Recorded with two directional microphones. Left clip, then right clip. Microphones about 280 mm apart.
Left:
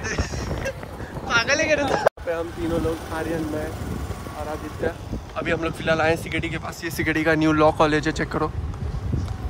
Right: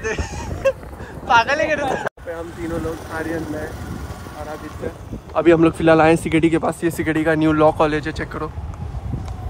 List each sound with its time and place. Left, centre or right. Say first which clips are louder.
0.0 s a sound: right 3 dB; centre
1.2 s speech: right 5 dB; centre
5.4 s speech: right 11 dB; centre
6.9 s speech: left 1 dB; centre